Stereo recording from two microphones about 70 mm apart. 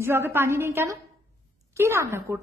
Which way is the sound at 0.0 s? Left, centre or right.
Right.